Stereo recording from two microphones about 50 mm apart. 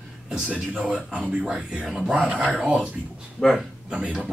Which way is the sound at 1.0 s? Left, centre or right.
Centre.